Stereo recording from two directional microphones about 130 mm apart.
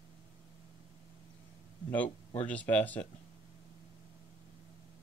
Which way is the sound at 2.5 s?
10° left (ahead or behind).